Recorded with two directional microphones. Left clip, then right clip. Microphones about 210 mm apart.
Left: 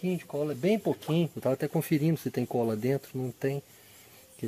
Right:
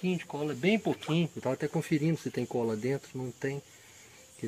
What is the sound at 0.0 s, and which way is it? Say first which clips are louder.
Speech: left 2 dB; 50° left (ahead or behind).